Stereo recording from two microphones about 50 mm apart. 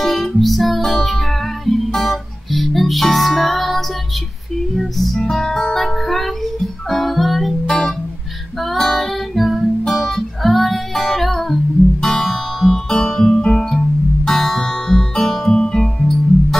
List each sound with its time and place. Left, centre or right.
0.0 s music: centre
13.7 s music: centre